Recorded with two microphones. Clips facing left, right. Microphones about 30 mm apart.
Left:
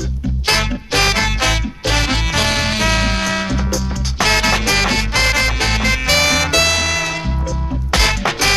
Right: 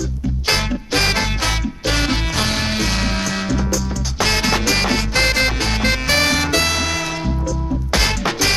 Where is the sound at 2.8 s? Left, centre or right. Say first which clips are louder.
Left 4 dB; left.